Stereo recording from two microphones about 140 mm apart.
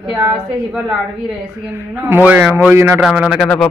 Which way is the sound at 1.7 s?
15° right (ahead or behind).